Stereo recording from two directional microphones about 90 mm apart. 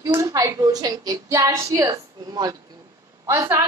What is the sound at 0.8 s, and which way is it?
Child singing, 45° right (ahead or behind).